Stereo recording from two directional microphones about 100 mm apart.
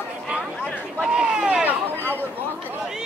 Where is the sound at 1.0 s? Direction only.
10° right (ahead or behind).